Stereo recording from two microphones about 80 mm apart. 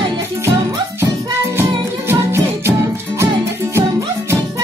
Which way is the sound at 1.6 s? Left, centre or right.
Right.